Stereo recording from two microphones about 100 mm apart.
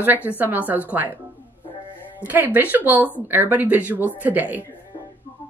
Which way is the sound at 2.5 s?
20° right (ahead or behind).